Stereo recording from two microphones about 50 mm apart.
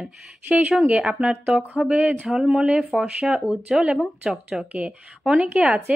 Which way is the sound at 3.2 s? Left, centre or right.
Centre.